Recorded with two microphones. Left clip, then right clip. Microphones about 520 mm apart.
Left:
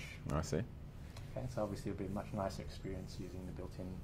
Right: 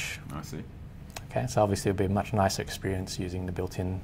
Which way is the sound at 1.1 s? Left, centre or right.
Right.